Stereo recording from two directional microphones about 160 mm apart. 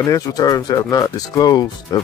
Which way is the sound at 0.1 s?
25° left (ahead or behind).